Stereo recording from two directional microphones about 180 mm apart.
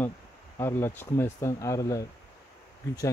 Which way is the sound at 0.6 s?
15° left (ahead or behind).